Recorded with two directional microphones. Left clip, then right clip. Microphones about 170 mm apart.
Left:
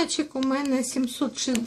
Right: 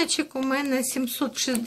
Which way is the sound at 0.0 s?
20° right (ahead or behind).